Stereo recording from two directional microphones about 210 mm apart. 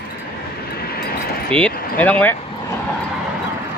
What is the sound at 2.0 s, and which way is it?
Speech, 5° left (ahead or behind).